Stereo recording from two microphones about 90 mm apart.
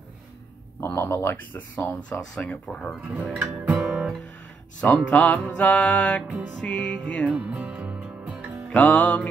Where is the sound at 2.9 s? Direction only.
15° right (ahead or behind).